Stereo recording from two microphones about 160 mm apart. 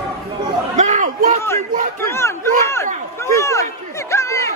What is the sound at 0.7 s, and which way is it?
Chatter, 45° right (ahead or behind).